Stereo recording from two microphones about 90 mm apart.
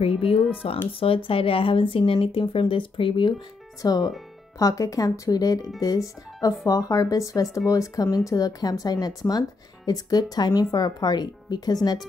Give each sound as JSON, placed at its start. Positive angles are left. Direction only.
{"t": 0.5, "sound": "speech", "side_deg": 90}
{"t": 3.8, "sound": "speech", "side_deg": 45}